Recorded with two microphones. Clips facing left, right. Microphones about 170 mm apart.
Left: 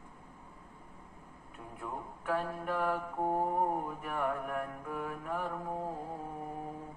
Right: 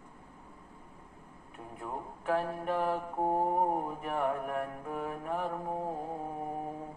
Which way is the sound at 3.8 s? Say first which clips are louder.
Right 3 dB; 40° right (ahead or behind).